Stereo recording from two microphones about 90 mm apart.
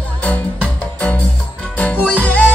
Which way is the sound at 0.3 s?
15° left (ahead or behind).